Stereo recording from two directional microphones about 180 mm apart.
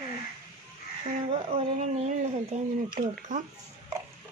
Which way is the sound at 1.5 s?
40° right (ahead or behind).